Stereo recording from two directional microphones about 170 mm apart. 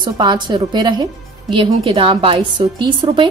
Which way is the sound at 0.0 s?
25° right (ahead or behind).